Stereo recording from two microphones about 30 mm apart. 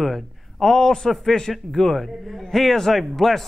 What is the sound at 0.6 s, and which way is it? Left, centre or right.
A man's voice, centre.